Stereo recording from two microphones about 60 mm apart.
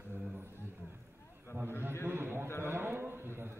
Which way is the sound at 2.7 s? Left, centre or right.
Right.